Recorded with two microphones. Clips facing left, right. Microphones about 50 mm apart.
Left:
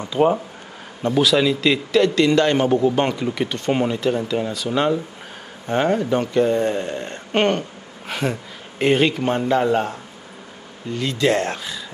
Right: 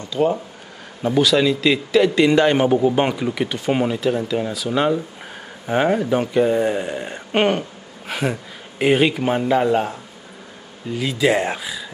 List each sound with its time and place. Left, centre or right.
0.0 s speech: left
1.0 s a man's voice: centre